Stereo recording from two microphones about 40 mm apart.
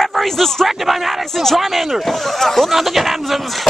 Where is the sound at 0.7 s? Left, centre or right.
Centre.